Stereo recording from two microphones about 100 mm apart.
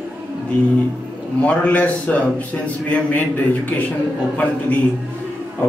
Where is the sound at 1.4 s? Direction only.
15° left (ahead or behind).